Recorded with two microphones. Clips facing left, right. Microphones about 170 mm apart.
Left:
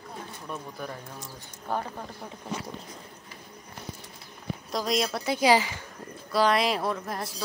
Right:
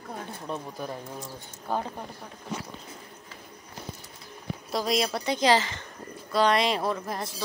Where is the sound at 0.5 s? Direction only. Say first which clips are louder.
Right 2 dB; 20° right (ahead or behind).